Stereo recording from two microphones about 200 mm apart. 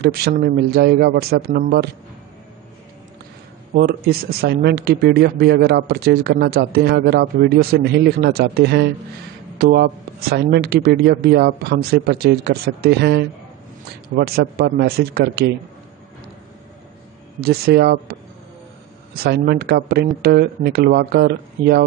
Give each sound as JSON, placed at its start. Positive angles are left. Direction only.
{"t": 0.0, "sound": "speech", "side_deg": -50}
{"t": 3.7, "sound": "speech", "side_deg": -50}
{"t": 17.4, "sound": "speech", "side_deg": -50}
{"t": 19.1, "sound": "speech", "side_deg": -50}